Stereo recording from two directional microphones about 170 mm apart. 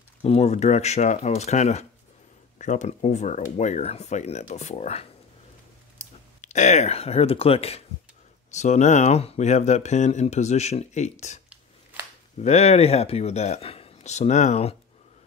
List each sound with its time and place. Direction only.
0.2 s speech: 40° left (ahead or behind)
6.4 s speech: 45° left (ahead or behind)